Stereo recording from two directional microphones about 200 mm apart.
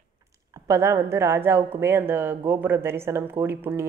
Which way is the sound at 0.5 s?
15° right (ahead or behind).